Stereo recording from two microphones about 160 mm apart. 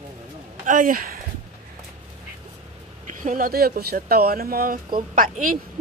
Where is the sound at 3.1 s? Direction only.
55° right (ahead or behind).